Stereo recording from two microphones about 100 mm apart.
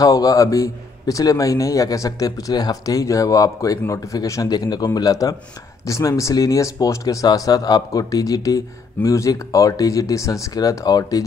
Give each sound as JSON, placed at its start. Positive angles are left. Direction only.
{"t": 0.0, "sound": "speech", "side_deg": 35}